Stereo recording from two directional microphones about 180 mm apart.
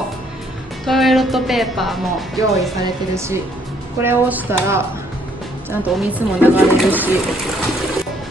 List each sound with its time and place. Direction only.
0.8 s a woman's voice: centre (ahead or behind)
2.3 s speech: 15° right (ahead or behind)